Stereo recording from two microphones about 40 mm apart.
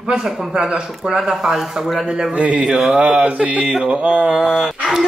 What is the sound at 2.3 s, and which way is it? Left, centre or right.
Mantra, right.